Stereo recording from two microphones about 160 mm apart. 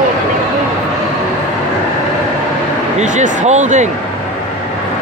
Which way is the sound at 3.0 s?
50° right (ahead or behind).